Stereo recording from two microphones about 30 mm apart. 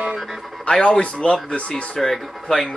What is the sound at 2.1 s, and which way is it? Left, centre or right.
Speech, centre.